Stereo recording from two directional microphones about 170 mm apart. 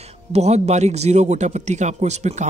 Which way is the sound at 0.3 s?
40° right (ahead or behind).